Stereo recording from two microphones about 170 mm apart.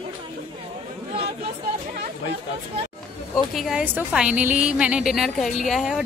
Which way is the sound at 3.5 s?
Centre (ahead or behind).